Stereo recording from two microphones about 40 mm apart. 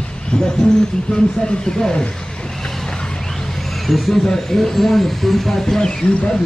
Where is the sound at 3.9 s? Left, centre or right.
Centre.